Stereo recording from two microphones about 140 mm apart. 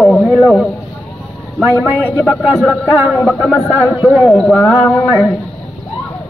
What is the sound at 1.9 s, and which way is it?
Speech, 10° left (ahead or behind).